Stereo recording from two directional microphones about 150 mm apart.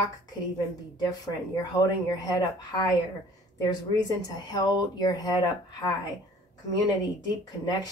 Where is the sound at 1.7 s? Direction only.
25° left (ahead or behind).